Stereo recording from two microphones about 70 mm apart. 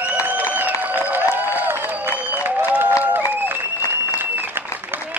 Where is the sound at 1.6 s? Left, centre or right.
Right.